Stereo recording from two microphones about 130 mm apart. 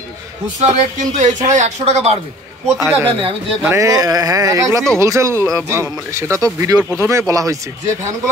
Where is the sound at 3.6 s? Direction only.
25° right (ahead or behind).